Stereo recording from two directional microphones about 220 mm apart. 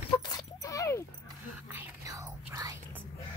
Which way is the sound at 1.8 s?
15° right (ahead or behind).